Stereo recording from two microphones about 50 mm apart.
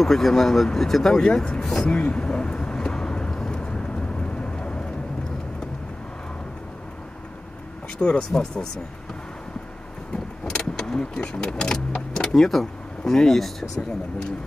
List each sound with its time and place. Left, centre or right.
0.0 s speech: centre
1.9 s vehicle: left
8.0 s speech: centre
10.4 s speech: centre